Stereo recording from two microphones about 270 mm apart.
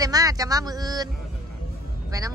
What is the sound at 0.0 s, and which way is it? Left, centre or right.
A man's voice, centre.